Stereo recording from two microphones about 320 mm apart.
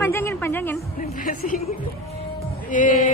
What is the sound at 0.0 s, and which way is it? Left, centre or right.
Music, centre.